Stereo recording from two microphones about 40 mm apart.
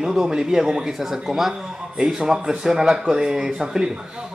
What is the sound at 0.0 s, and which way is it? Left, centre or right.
Speech, centre.